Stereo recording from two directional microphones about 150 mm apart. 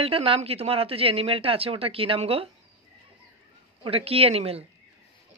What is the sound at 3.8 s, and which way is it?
Speech, 40° right (ahead or behind).